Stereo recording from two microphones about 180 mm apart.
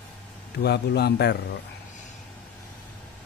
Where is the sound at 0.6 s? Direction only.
65° left (ahead or behind).